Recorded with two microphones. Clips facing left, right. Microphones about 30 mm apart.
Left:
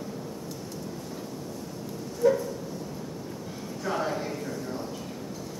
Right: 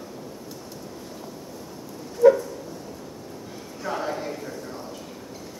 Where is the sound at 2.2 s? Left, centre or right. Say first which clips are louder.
Right 7 dB; centre.